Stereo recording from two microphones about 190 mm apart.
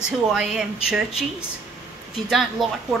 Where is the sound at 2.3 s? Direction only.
Centre (ahead or behind).